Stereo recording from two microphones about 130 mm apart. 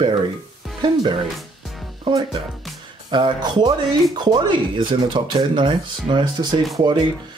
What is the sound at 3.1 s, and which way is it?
Speech, 35° right (ahead or behind).